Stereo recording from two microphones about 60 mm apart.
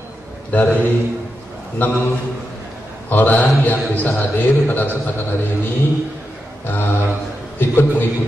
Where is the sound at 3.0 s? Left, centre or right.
Left.